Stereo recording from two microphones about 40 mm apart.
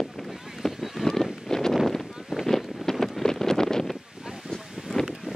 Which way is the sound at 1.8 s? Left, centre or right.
Centre.